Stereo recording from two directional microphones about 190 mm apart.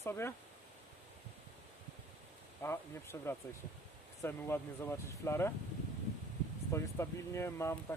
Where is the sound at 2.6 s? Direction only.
15° left (ahead or behind).